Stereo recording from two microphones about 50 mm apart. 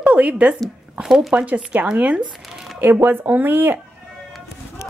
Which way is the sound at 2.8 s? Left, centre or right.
Right.